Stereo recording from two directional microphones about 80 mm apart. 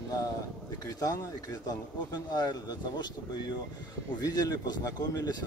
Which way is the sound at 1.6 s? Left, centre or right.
Left.